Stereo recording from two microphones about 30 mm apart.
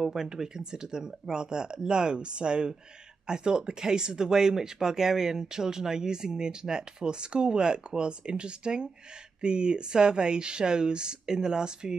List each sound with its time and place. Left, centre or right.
0.0 s speech: centre